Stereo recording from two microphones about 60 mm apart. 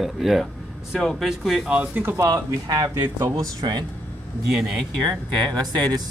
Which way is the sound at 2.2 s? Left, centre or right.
Right.